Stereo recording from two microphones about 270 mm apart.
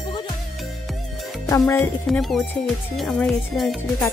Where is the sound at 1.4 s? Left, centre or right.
Centre.